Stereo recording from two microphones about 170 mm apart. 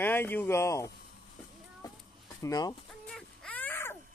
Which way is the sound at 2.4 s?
20° left (ahead or behind).